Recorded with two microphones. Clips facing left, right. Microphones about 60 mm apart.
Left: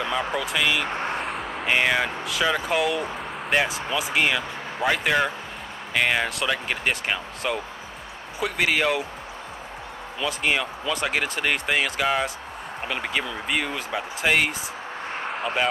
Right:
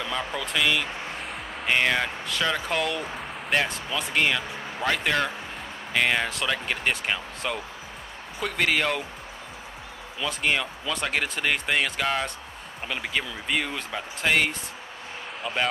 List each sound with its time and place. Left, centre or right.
0.4 s speech: centre
0.9 s vehicle: left
1.3 s speech: centre
10.2 s speech: centre
15.1 s a sound: left